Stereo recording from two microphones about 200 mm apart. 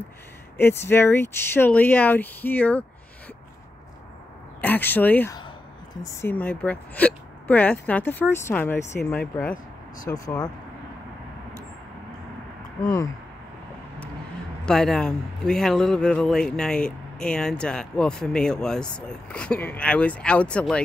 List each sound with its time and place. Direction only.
0.6 s speech: 10° left (ahead or behind)
4.6 s speech: 10° left (ahead or behind)
12.8 s speech: 20° left (ahead or behind)
14.7 s a man's voice: 5° left (ahead or behind)